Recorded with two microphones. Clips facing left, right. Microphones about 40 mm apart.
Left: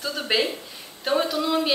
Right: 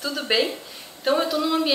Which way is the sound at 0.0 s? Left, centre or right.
Centre.